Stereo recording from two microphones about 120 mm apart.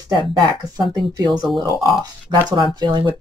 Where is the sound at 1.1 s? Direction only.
35° right (ahead or behind).